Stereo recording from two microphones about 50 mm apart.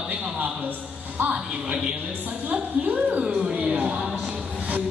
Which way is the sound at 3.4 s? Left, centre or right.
Right.